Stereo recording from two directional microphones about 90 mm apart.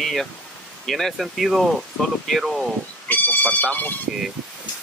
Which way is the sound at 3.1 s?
20° left (ahead or behind).